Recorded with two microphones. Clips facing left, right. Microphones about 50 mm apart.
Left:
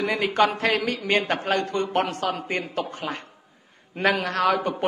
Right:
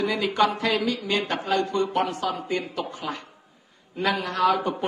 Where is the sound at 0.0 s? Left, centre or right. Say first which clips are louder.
Left 1 dB; left.